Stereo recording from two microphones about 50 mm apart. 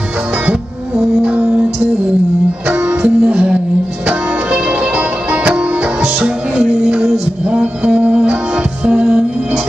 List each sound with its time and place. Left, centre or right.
0.9 s music: right
3.0 s music: right